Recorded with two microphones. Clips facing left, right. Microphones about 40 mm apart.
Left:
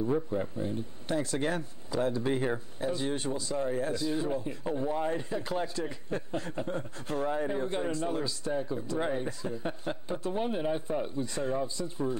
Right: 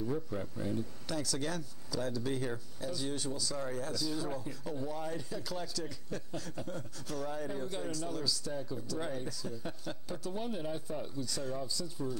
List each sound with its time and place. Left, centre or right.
0.0 s speech: left